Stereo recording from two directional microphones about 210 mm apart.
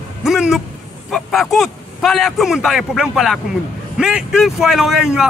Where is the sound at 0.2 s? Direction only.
Centre (ahead or behind).